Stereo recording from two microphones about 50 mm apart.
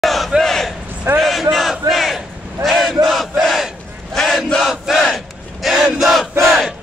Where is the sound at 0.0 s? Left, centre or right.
Centre.